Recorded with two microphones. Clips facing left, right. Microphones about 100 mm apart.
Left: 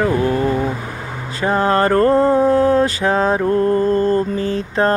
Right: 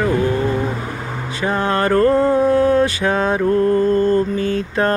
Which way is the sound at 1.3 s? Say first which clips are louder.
Left 3 dB; 35° left (ahead or behind).